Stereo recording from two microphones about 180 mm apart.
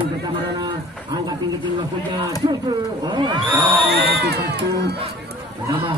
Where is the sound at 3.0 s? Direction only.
25° right (ahead or behind).